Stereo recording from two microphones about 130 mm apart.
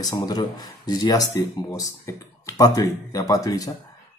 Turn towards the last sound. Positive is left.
turn(degrees=25)  # may be behind; listen again after turning